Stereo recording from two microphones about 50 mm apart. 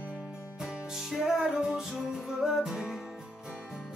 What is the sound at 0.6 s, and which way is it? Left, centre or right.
Music, centre.